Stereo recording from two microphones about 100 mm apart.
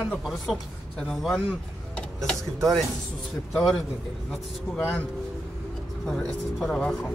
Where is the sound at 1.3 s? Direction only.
15° left (ahead or behind).